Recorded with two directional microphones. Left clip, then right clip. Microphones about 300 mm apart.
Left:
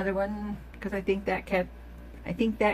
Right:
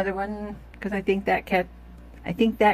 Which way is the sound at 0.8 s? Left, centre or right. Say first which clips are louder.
Right 4 dB; right.